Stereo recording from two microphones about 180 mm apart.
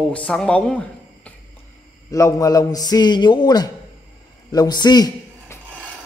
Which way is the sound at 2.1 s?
20° left (ahead or behind).